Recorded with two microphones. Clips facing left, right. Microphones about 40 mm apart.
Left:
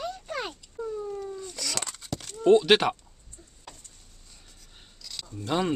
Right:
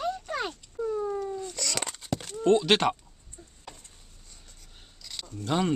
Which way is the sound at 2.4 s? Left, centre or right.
Centre.